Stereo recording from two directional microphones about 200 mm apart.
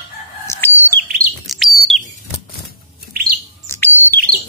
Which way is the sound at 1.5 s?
Centre (ahead or behind).